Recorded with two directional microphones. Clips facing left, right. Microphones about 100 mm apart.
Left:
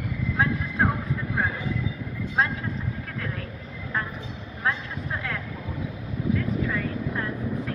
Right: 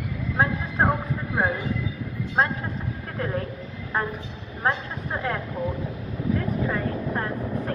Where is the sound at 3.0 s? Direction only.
30° right (ahead or behind).